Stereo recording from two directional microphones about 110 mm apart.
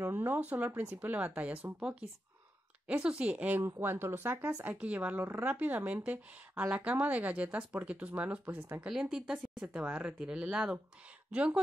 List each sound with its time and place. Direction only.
0.0 s a woman's voice: 20° right (ahead or behind)
4.7 s a woman's voice: 15° right (ahead or behind)
9.3 s a woman's voice: 5° right (ahead or behind)